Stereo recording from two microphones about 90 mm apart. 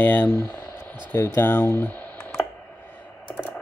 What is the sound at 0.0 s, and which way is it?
Speech, 20° left (ahead or behind).